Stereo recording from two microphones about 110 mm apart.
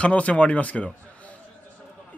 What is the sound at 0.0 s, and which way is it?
Speech, 10° left (ahead or behind).